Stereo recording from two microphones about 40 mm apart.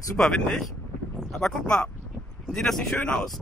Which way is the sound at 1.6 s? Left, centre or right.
Left.